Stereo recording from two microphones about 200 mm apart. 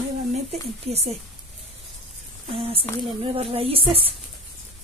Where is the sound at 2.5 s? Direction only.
30° right (ahead or behind).